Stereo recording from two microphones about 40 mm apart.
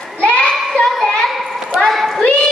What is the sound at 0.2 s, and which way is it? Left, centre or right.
Child singing, left.